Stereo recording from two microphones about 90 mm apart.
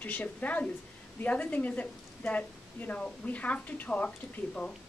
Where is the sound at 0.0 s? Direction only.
15° left (ahead or behind).